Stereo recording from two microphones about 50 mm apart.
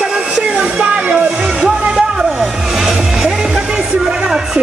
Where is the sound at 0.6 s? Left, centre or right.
Centre.